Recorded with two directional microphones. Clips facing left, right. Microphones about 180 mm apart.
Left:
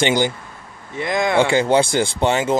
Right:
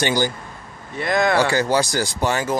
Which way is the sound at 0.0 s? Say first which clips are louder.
Left 3 dB; 20° left (ahead or behind).